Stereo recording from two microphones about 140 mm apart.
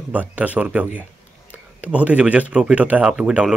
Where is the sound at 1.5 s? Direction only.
10° right (ahead or behind).